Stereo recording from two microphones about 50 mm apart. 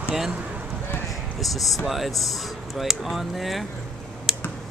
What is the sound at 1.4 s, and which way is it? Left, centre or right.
Speech, centre.